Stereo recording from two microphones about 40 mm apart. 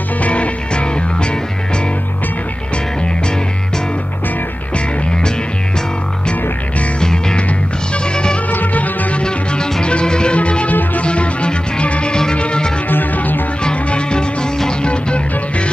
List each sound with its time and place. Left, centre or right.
0.2 s music: left
7.0 s music: centre
8.5 s music: left
9.2 s music: left
12.8 s music: left
13.7 s music: left